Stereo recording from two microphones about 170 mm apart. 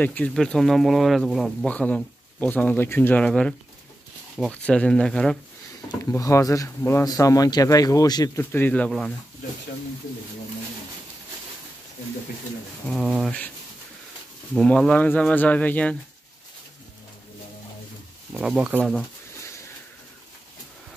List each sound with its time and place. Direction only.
0.0 s speech: 10° left (ahead or behind)
5.9 s speech: 20° left (ahead or behind)
8.5 s speech: 10° left (ahead or behind)
12.8 s speech: 5° right (ahead or behind)
14.5 s speech: 5° left (ahead or behind)
18.3 s speech: centre (ahead or behind)